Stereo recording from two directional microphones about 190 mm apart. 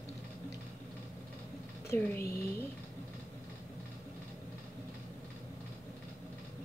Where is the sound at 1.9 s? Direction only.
10° left (ahead or behind).